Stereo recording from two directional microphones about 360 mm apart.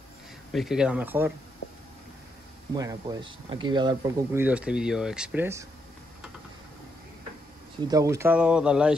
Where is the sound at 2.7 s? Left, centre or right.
Centre.